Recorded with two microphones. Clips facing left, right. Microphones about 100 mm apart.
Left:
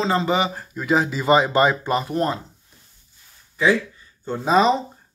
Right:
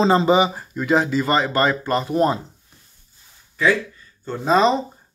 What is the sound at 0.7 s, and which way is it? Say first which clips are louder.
Speech: right 2 dB; 5° left (ahead or behind).